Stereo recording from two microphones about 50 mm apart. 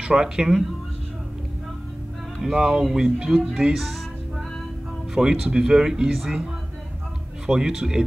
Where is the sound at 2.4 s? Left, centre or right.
Centre.